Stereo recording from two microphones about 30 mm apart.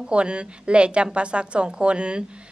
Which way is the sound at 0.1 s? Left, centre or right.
Right.